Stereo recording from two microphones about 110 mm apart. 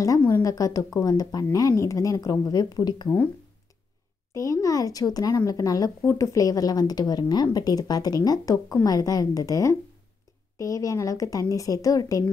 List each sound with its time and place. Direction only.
0.3 s speech: 30° left (ahead or behind)
4.3 s speech: 30° left (ahead or behind)